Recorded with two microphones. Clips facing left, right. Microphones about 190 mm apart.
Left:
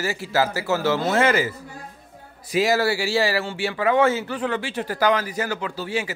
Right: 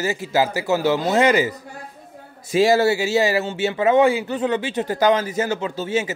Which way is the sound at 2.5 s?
25° right (ahead or behind).